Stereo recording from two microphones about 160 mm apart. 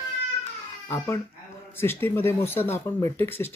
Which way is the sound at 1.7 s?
15° left (ahead or behind).